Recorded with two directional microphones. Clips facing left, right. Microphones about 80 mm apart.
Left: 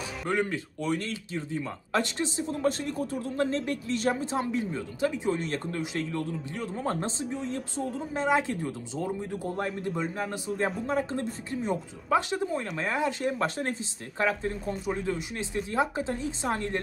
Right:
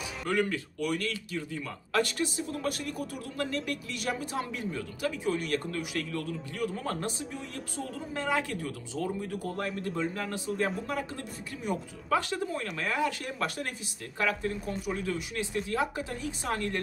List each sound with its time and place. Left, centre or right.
0.3 s speech: left
8.2 s speech: left